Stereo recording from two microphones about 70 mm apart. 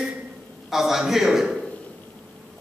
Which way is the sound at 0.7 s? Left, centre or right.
Centre.